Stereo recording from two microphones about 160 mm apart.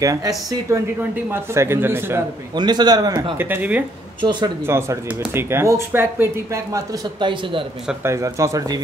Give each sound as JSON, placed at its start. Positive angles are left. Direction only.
{"t": 0.0, "sound": "a man's voice", "side_deg": -20}
{"t": 2.5, "sound": "a man's voice", "side_deg": -25}
{"t": 3.3, "sound": "speech", "side_deg": -10}
{"t": 4.2, "sound": "a man's voice", "side_deg": -30}
{"t": 4.6, "sound": "speech", "side_deg": -15}
{"t": 7.2, "sound": "a man's voice", "side_deg": -30}
{"t": 8.0, "sound": "a man's voice", "side_deg": -20}